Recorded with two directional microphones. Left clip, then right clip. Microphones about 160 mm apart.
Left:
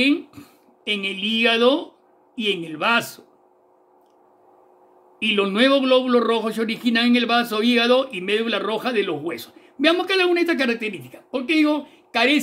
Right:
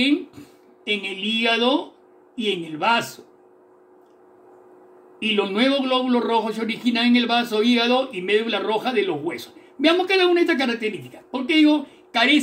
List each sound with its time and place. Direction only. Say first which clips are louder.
0.8 s speech: left 1 dB; 85° left
5.2 s a man's voice: left 2 dB; 90° left